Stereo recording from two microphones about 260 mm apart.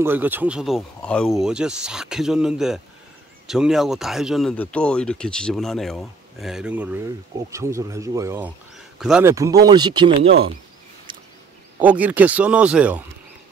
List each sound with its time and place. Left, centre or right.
0.0 s speech: centre
11.1 s a sound: centre
11.8 s speech: centre